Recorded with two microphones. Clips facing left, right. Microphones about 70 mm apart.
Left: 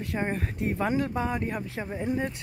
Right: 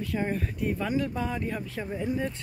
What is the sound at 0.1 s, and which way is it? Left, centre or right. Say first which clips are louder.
Speech: left 1 dB; left.